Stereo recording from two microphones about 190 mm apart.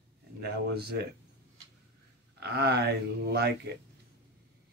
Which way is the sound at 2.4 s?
60° right (ahead or behind).